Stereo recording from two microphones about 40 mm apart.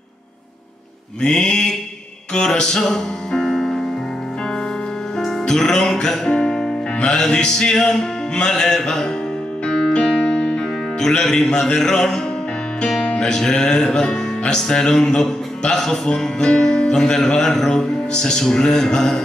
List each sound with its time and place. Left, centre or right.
1.2 s music: centre
5.1 s music: centre